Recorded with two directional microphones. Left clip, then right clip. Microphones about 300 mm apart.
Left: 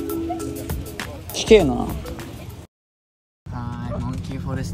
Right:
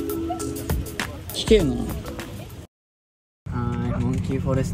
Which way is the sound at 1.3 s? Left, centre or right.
Right.